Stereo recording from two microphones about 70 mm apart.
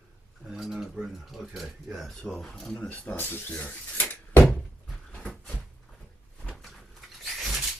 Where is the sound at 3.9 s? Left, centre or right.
Left.